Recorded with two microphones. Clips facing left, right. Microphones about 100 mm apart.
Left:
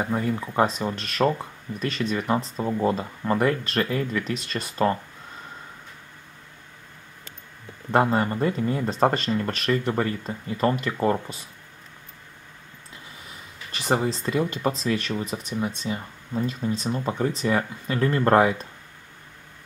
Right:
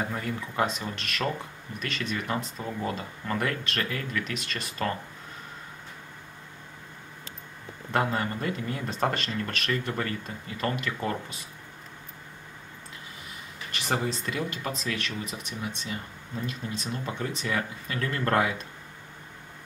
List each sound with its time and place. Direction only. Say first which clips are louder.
0.0 s speech: left 6 dB; 25° left (ahead or behind)
7.9 s speech: left 6 dB; 30° left (ahead or behind)
14.0 s speech: left 6 dB; 35° left (ahead or behind)